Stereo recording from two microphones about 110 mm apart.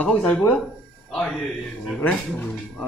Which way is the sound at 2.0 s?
15° left (ahead or behind).